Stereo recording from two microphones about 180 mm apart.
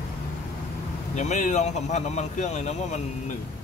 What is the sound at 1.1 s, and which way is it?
Speech, 40° left (ahead or behind).